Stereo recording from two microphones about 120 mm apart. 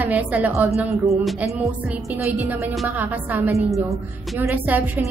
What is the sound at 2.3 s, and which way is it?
A woman's voice, 15° right (ahead or behind).